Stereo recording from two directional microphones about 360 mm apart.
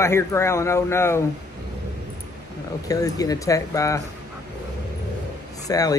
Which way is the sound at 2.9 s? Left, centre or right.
Centre.